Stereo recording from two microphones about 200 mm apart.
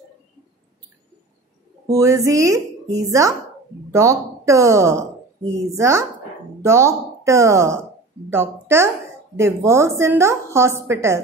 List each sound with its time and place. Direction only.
2.0 s speech: 15° right (ahead or behind)